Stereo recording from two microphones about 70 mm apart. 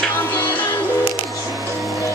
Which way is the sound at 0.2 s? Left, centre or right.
Left.